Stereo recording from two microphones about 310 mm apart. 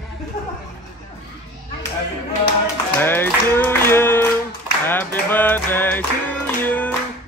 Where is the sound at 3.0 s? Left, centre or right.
Centre.